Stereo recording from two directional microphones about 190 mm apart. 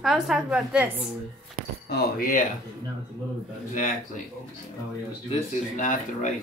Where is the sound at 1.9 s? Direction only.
50° left (ahead or behind).